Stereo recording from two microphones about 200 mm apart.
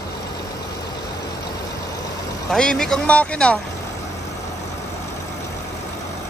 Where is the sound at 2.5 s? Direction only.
5° left (ahead or behind).